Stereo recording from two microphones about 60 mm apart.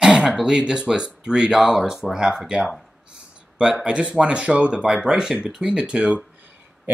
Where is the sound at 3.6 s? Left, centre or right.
Centre.